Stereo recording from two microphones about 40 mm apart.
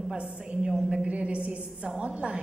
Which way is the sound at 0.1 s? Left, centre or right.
Right.